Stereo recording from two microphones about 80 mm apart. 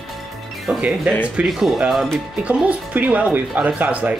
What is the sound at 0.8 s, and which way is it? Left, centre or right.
Speech, centre.